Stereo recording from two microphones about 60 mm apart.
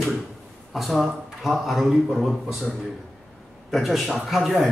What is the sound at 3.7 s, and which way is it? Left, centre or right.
A man's voice, centre.